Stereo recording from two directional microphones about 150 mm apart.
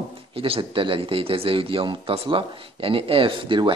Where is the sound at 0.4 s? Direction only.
35° right (ahead or behind).